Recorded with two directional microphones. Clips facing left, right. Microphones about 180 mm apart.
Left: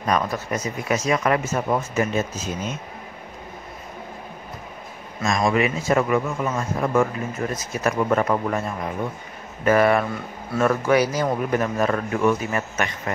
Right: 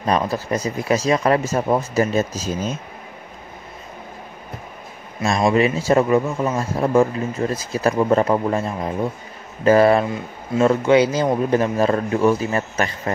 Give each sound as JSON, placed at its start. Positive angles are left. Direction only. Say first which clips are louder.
{"t": 0.0, "sound": "speech", "louder": "right 3 dB", "side_deg": -30}
{"t": 5.2, "sound": "speech", "louder": "right 4 dB", "side_deg": -30}